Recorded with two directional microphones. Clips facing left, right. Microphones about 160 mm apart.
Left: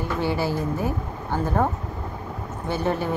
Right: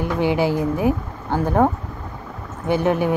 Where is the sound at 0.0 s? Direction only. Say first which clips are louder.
Right 5 dB; 15° right (ahead or behind).